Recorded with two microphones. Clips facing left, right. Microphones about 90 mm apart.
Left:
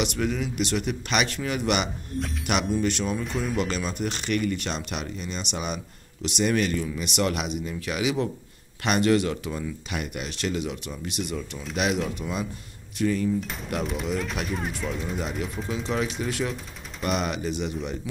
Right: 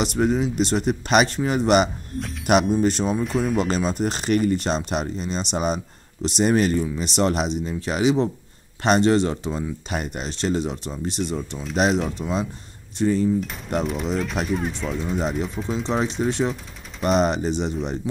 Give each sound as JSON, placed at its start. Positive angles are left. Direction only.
{"t": 0.0, "sound": "speech", "side_deg": -35}
{"t": 3.3, "sound": "speech", "side_deg": 0}
{"t": 3.6, "sound": "speech", "side_deg": -35}
{"t": 13.7, "sound": "speech", "side_deg": 0}
{"t": 15.9, "sound": "speech", "side_deg": -30}